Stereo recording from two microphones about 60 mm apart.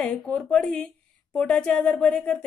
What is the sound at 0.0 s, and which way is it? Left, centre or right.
A woman's voice, centre.